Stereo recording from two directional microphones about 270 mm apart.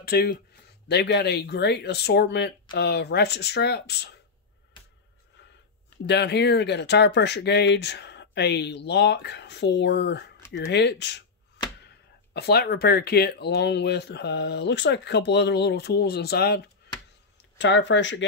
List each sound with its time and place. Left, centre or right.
0.0 s speech: left
6.0 s speech: left
12.4 s speech: left